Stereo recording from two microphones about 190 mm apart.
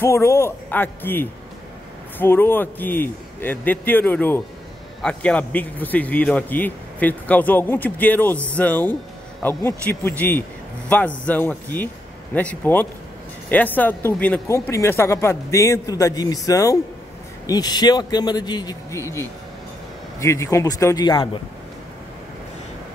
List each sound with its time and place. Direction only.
0.0 s a man's voice: 15° left (ahead or behind)